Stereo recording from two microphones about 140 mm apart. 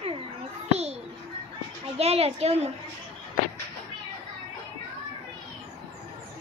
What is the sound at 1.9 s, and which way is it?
Speech, 45° right (ahead or behind).